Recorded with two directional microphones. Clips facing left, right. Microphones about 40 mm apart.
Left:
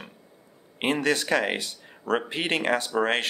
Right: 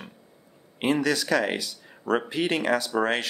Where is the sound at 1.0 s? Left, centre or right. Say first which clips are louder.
Even; left.